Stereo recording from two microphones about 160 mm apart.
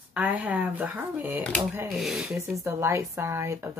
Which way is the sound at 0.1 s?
10° right (ahead or behind).